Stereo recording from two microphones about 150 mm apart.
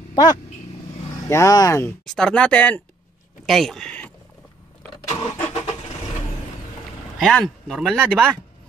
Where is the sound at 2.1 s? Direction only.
5° left (ahead or behind).